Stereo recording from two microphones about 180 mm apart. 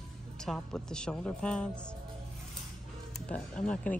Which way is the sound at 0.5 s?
5° left (ahead or behind).